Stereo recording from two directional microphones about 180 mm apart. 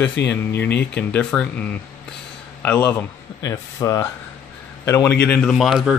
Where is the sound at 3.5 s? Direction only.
20° left (ahead or behind).